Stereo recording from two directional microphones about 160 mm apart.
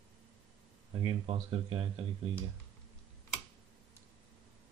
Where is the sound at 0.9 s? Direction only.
35° right (ahead or behind).